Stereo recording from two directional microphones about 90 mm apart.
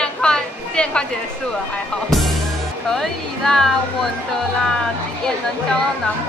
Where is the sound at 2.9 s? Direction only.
5° left (ahead or behind).